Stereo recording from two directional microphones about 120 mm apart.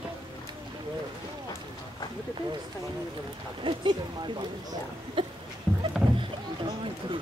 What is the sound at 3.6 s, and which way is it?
Speech, 45° right (ahead or behind).